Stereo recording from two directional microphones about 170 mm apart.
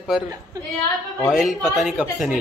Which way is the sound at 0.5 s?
20° right (ahead or behind).